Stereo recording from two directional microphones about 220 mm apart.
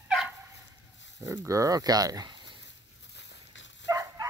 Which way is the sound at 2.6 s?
50° left (ahead or behind).